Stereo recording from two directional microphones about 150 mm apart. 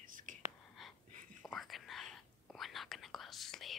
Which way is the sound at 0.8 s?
Centre (ahead or behind).